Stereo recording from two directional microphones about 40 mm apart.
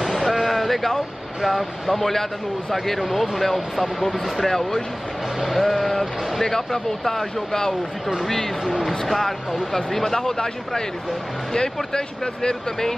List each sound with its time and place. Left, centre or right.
0.2 s speech: centre
8.6 s speech: centre
9.0 s speech: centre
11.5 s speech: centre